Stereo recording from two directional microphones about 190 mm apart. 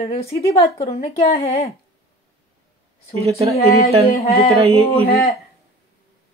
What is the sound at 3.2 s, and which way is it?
Speech, 30° right (ahead or behind).